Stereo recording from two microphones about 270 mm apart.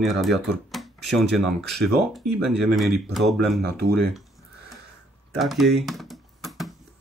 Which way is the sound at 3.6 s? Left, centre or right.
Right.